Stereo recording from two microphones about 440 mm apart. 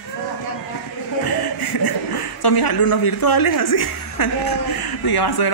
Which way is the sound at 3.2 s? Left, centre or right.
Left.